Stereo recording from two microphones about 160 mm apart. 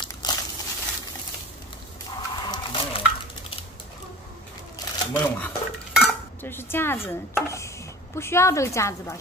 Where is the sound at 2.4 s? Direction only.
25° left (ahead or behind).